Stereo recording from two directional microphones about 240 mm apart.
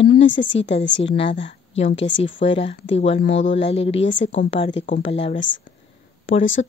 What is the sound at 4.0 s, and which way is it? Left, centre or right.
Speech, left.